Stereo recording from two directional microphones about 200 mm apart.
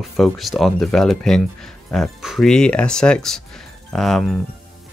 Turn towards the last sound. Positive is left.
turn(degrees=0)  # may be behind; listen again after turning